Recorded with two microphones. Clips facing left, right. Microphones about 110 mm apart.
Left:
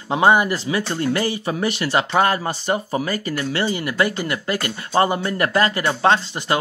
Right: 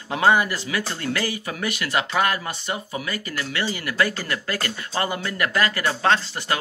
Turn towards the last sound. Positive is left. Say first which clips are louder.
# left 3 dB
turn(degrees=25)  # may be behind; listen again after turning